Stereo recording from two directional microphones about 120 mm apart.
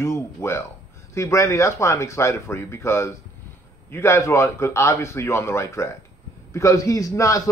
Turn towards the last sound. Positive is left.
turn(degrees=25)  # may be behind; listen again after turning